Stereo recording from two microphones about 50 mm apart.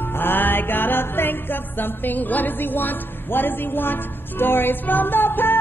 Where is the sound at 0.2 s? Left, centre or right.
Left.